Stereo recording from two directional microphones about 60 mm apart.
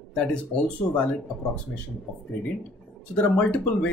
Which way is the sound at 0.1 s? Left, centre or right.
Centre.